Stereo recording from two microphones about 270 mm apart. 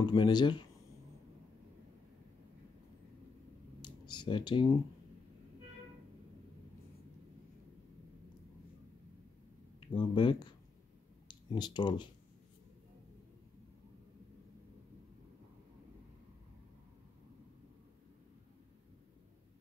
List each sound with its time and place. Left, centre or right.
0.0 s speech: centre
3.8 s a sound: centre
9.8 s speech: centre